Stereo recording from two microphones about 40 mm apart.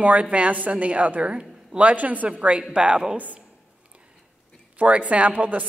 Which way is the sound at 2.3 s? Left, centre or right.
Right.